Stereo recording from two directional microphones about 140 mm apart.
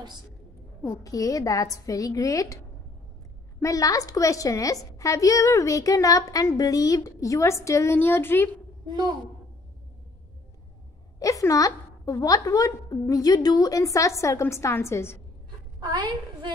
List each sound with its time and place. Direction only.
0.8 s a woman's voice: 25° left (ahead or behind)
11.1 s a woman's voice: 25° left (ahead or behind)
15.8 s a woman's voice: 30° right (ahead or behind)